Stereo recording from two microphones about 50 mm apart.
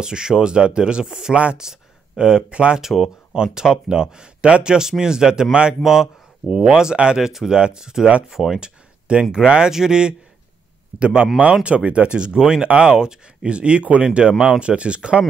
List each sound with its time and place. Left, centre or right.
0.0 s speech: centre
1.3 s speech: right
1.6 s speech: centre
2.8 s speech: centre
3.5 s speech: centre
8.5 s speech: centre